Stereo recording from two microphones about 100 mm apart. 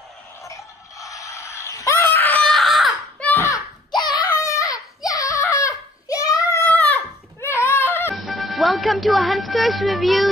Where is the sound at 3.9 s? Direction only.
45° left (ahead or behind).